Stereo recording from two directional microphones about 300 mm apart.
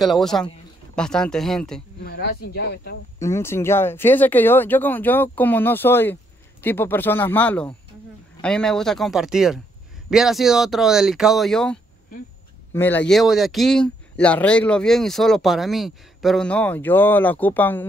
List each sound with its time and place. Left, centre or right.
0.0 s speech: centre
2.0 s speech: left
3.2 s speech: centre